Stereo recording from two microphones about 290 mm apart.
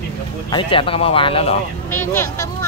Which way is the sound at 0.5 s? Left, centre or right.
Centre.